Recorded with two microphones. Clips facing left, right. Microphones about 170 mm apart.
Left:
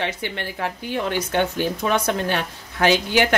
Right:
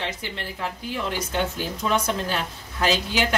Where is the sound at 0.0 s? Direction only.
65° left (ahead or behind).